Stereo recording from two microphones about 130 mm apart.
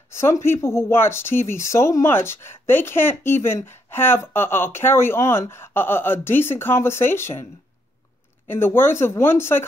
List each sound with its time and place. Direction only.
0.1 s speech: 20° left (ahead or behind)
8.5 s speech: 15° left (ahead or behind)